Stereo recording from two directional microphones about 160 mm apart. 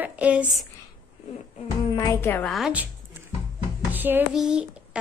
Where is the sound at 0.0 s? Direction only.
10° right (ahead or behind).